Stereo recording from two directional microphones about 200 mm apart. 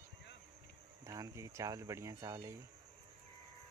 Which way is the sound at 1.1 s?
15° right (ahead or behind).